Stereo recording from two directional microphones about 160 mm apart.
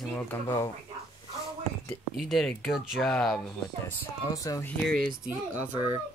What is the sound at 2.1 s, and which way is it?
Speech, centre (ahead or behind).